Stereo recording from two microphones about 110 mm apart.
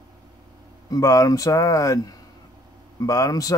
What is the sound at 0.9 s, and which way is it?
Speech, 35° left (ahead or behind).